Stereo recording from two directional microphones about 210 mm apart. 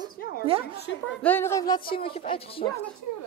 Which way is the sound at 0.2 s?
45° left (ahead or behind).